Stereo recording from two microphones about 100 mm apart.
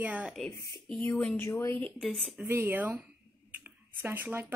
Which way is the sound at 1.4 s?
25° left (ahead or behind).